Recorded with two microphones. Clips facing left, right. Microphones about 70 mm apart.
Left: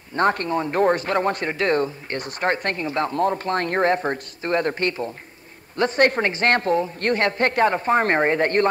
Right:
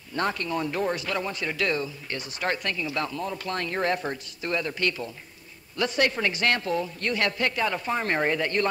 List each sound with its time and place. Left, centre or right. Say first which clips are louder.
0.1 s speech: left 7 dB; left